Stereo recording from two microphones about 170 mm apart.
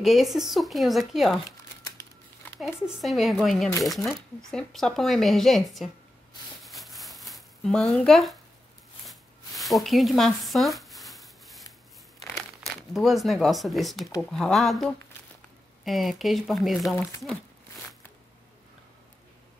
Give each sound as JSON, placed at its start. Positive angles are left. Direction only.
{"t": 0.0, "sound": "speech", "side_deg": 0}
{"t": 2.6, "sound": "speech", "side_deg": 0}
{"t": 6.6, "sound": "a sound", "side_deg": 0}
{"t": 12.6, "sound": "speech", "side_deg": 0}